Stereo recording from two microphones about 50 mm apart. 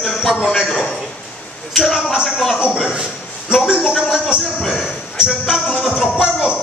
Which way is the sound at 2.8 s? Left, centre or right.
Centre.